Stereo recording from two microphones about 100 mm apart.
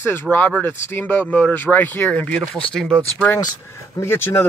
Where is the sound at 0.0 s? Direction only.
20° left (ahead or behind).